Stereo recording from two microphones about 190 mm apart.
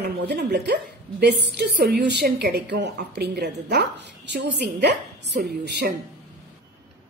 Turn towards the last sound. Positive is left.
turn(degrees=-60)  # may be behind; listen again after turning